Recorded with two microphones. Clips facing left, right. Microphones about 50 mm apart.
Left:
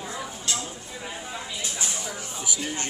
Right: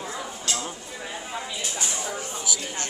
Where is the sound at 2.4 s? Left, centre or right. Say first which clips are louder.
Left 1 dB; left.